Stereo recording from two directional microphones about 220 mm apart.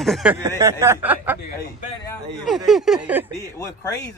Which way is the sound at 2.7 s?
Centre (ahead or behind).